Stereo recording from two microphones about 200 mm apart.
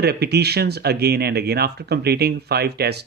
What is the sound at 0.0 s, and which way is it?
Speech, 55° right (ahead or behind).